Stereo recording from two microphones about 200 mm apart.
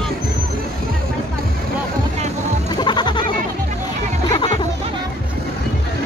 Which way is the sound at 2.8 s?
20° left (ahead or behind).